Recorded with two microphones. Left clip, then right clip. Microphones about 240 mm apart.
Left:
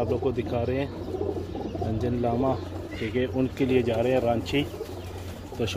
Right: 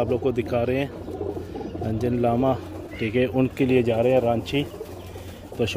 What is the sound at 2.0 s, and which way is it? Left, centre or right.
Speech, right.